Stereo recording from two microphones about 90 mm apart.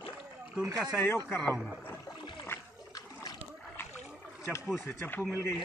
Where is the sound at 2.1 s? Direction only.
60° left (ahead or behind).